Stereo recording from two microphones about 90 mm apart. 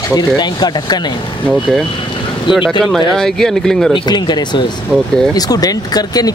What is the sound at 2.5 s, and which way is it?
Speech, 60° left (ahead or behind).